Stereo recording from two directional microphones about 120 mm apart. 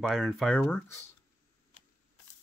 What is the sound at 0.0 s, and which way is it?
Speech, centre (ahead or behind).